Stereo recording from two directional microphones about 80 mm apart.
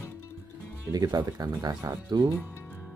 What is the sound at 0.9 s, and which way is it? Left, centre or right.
Speech, right.